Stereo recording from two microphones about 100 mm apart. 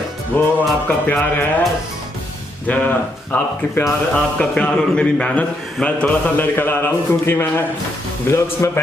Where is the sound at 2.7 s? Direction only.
15° left (ahead or behind).